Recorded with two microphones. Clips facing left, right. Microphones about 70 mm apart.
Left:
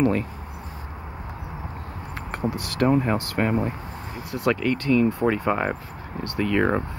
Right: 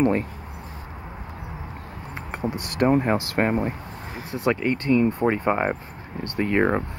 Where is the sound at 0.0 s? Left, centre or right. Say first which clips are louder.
Right 1 dB; right.